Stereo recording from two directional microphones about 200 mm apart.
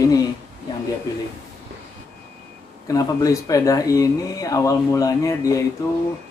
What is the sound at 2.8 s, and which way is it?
Speech, 15° left (ahead or behind).